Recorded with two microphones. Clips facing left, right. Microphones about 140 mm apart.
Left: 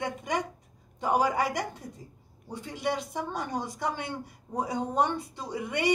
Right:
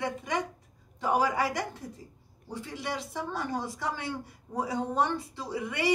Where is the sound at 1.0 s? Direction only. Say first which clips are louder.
Left 1 dB; 15° left (ahead or behind).